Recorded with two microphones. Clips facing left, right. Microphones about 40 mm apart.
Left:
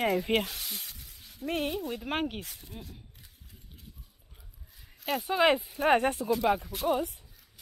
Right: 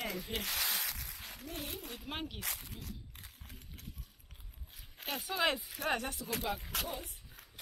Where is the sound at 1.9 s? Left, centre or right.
Left.